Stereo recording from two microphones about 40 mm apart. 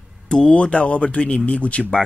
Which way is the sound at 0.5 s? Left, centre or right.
Left.